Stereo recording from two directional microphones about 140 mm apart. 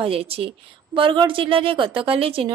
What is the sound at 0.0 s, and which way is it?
A woman's voice, 45° right (ahead or behind).